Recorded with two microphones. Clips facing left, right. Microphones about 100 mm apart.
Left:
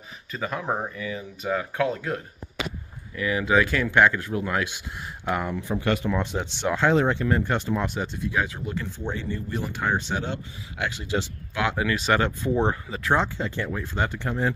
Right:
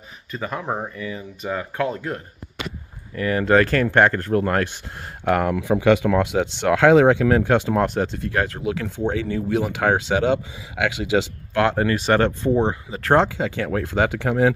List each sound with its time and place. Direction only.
0.3 s speech: centre (ahead or behind)
3.2 s speech: 50° right (ahead or behind); by 6.4 s 70° right (ahead or behind)
6.7 s speech: 90° right; by 8.9 s 70° right (ahead or behind)
9.1 s speech: 90° right
11.5 s speech: 50° right (ahead or behind)
13.0 s speech: 70° right (ahead or behind)